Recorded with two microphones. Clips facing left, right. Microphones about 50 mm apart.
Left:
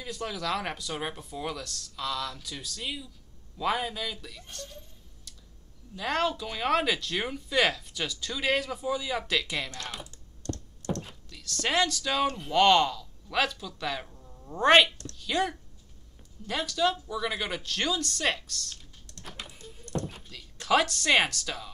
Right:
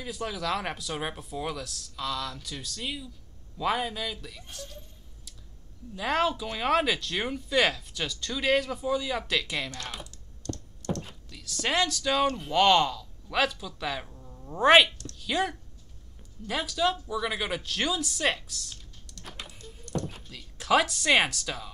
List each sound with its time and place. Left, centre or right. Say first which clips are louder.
0.0 s speech: right 1 dB; centre
5.9 s speech: right 2 dB; centre
10.4 s computer keyboard: even; left
11.0 s speech: even; centre
19.2 s typing: even; centre
20.1 s speech: right 1 dB; centre